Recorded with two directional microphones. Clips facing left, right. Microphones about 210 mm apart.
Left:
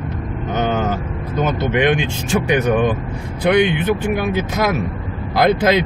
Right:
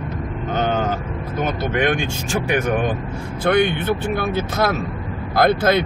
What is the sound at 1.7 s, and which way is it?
Speech, 20° left (ahead or behind).